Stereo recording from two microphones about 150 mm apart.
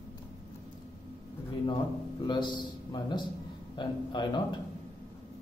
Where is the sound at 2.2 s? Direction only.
30° left (ahead or behind).